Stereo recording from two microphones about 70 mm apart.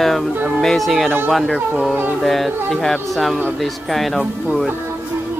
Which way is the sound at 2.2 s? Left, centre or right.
Centre.